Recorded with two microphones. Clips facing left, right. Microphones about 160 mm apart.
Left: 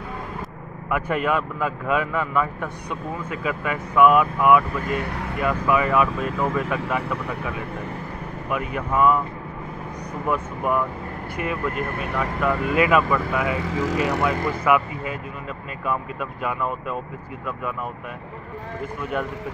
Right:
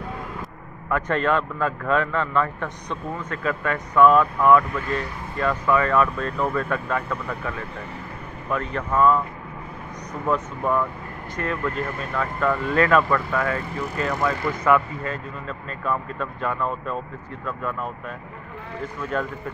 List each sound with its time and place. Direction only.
0.8 s speech: 10° left (ahead or behind)
10.2 s speech: 10° left (ahead or behind)
13.6 s speech: 90° left
14.2 s speech: 10° left (ahead or behind)
18.9 s speech: 10° left (ahead or behind)